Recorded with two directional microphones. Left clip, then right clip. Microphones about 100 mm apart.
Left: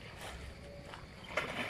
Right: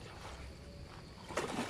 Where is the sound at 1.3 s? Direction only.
40° right (ahead or behind).